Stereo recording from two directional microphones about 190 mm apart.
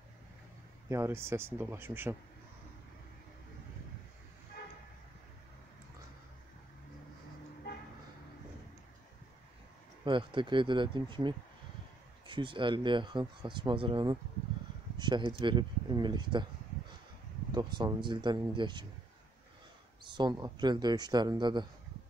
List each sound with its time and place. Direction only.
0.8 s speech: 15° right (ahead or behind)
10.0 s speech: 25° right (ahead or behind)
17.5 s speech: 20° right (ahead or behind)
20.0 s speech: 25° right (ahead or behind)